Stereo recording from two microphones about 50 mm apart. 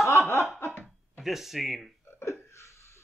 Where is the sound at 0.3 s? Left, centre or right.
Left.